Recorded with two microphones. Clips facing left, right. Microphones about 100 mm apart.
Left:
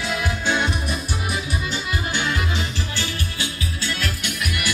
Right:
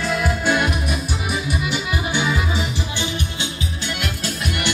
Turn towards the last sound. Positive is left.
turn(degrees=-30)  # may be behind; listen again after turning